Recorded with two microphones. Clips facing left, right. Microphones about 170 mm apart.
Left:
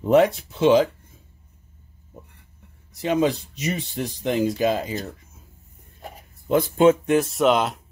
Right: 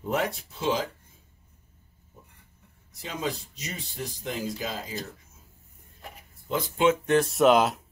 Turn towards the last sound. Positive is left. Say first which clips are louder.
# even
turn(degrees=0)  # may be behind; listen again after turning